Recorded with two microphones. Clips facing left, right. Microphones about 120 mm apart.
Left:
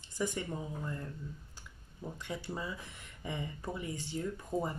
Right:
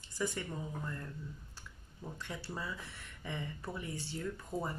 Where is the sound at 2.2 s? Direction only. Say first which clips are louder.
Left 3 dB; 20° left (ahead or behind).